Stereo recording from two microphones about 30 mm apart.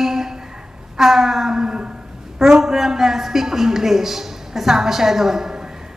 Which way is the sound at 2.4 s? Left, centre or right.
Centre.